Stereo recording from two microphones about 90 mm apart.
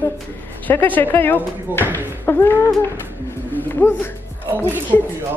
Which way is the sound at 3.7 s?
25° left (ahead or behind).